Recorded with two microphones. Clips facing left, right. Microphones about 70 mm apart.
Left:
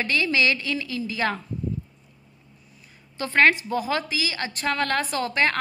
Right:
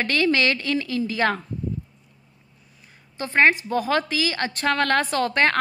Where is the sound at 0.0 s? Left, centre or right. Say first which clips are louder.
Right 2 dB; right.